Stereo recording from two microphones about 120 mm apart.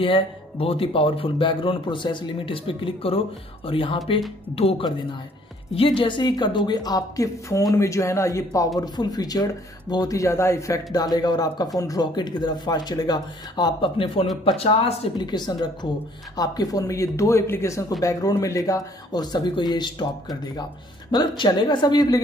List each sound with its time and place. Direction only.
0.0 s a man's voice: 50° left (ahead or behind)
5.8 s speech: 45° left (ahead or behind); by 10.8 s 20° left (ahead or behind)
11.1 s speech: 35° left (ahead or behind)